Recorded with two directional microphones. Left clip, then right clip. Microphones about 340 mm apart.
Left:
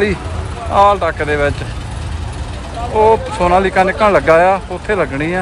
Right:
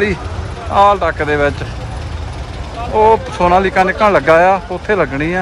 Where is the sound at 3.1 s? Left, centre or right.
Centre.